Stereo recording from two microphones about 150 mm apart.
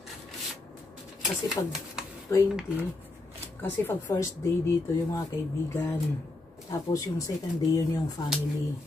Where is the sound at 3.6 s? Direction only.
15° left (ahead or behind).